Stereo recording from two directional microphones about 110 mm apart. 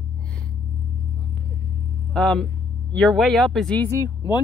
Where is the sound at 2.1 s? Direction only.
5° left (ahead or behind).